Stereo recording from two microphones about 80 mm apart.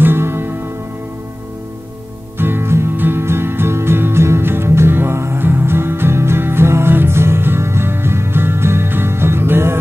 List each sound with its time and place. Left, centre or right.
0.0 s music: right
2.3 s music: right